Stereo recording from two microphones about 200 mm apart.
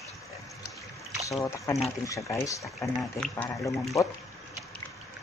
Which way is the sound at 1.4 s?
15° left (ahead or behind).